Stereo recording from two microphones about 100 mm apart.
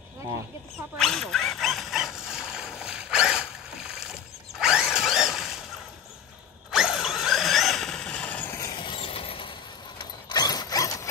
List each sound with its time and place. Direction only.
0.9 s dog: centre (ahead or behind)
4.6 s drill: 5° right (ahead or behind)
6.7 s vehicle: 5° right (ahead or behind); by 8.5 s 15° left (ahead or behind)
8.7 s mechanisms: 55° left (ahead or behind)
9.9 s mechanisms: 40° left (ahead or behind)